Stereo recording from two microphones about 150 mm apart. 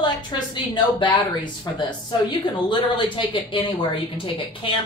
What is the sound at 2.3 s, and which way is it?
Speech, 35° left (ahead or behind).